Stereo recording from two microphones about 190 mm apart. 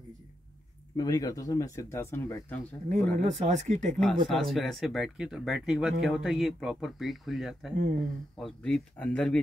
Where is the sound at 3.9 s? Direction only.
5° left (ahead or behind).